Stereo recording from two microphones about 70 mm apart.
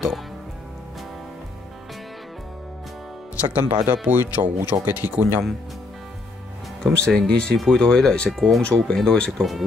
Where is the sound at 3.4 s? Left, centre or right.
Centre.